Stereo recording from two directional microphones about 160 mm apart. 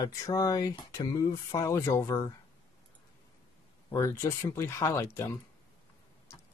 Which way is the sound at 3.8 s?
20° left (ahead or behind).